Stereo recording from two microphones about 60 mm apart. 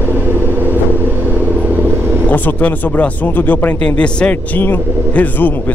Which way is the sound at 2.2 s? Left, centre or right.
Left.